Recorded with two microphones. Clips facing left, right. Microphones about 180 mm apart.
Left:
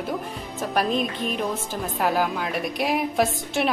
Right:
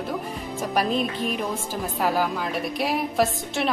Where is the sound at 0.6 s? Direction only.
5° right (ahead or behind).